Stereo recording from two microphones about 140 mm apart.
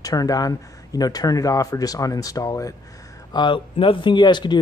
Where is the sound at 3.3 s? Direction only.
35° left (ahead or behind).